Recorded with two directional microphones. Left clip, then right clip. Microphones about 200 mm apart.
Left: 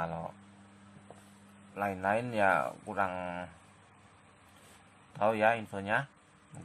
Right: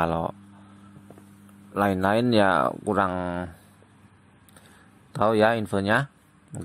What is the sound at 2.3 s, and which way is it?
Speech, 50° right (ahead or behind).